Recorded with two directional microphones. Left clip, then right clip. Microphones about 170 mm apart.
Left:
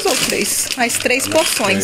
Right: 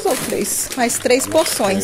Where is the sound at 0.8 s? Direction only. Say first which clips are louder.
Even; 15° right (ahead or behind).